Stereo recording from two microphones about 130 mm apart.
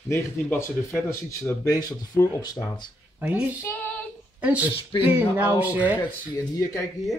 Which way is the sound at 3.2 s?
10° right (ahead or behind).